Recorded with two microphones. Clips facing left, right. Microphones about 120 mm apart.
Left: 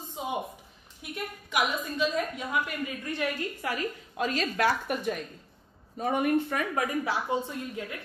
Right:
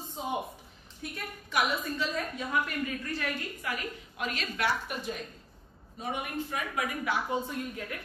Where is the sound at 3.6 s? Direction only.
30° left (ahead or behind).